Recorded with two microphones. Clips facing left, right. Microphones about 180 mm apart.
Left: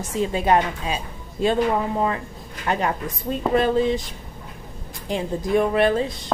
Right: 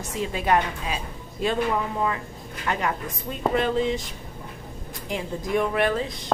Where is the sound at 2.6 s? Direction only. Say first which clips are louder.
Left 3 dB; 30° left (ahead or behind).